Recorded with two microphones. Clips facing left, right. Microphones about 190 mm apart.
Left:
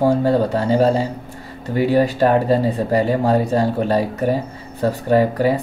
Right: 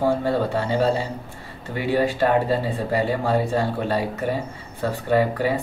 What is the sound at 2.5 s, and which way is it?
Speech, 40° left (ahead or behind).